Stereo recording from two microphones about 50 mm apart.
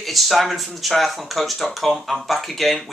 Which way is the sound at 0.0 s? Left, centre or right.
Centre.